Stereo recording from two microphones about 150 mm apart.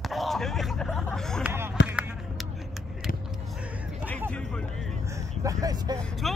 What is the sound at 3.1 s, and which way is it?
Vehicle, 70° left (ahead or behind).